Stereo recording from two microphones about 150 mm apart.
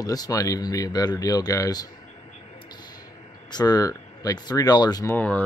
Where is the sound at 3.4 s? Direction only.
25° left (ahead or behind).